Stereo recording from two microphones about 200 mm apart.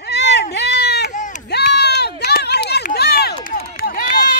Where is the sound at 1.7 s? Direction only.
55° left (ahead or behind).